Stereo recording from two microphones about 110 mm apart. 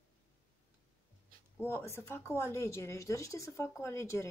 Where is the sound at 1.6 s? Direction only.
25° left (ahead or behind).